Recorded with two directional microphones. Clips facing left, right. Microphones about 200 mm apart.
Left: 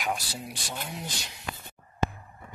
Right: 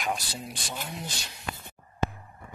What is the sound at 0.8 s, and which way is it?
Speech, 15° left (ahead or behind).